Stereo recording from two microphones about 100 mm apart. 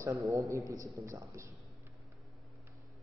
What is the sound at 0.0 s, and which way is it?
A man's voice, 30° right (ahead or behind).